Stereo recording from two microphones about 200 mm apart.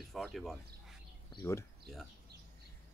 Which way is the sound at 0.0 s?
Centre (ahead or behind).